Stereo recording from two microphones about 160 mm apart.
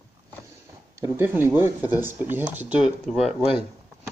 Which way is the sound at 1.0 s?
15° right (ahead or behind).